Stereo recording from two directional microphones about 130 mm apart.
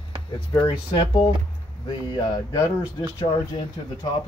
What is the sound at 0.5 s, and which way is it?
Speech, 35° left (ahead or behind).